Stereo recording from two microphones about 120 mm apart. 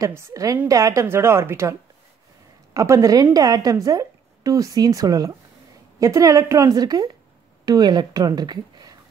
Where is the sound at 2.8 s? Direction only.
25° right (ahead or behind).